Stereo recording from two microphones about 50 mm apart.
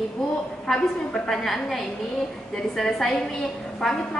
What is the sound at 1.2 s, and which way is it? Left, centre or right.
Speech, centre.